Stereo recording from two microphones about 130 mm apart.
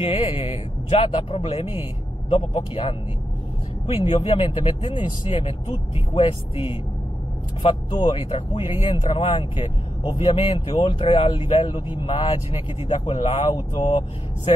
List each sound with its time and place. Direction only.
0.0 s speech: 45° left (ahead or behind)
7.9 s speech: 35° left (ahead or behind)